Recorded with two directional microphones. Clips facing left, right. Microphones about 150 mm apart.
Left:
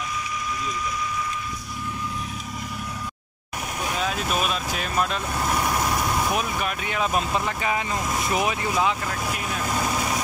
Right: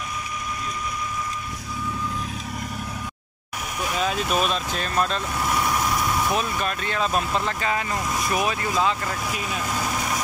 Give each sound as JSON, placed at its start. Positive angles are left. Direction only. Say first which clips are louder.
{"t": 4.0, "sound": "speech", "louder": "right 3 dB", "side_deg": 0}